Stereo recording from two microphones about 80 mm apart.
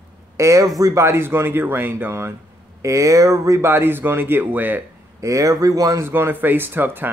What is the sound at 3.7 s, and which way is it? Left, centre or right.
Speech, right.